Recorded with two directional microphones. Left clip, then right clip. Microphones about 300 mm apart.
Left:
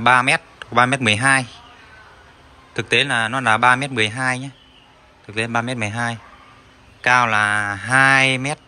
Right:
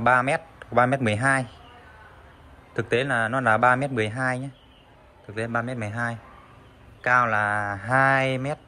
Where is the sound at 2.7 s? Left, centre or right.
Centre.